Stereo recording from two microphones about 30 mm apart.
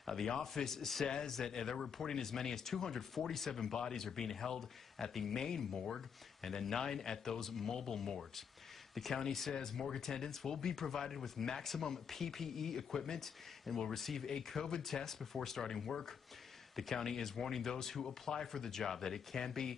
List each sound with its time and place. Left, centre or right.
0.0 s a sound: centre
0.4 s speech: centre
1.0 s speech: left; by 14.3 s centre
14.5 s speech: left
14.8 s speech: centre